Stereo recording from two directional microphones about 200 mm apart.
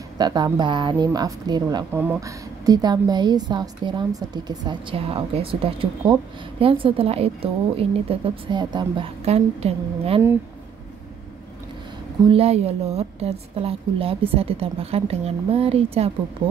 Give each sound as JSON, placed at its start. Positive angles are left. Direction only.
{"t": 0.2, "sound": "a woman's voice", "side_deg": -20}
{"t": 12.3, "sound": "a woman's voice", "side_deg": -30}